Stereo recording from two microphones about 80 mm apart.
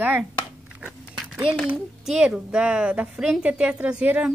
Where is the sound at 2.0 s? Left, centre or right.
Centre.